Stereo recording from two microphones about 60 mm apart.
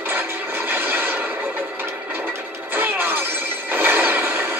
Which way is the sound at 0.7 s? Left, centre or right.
Right.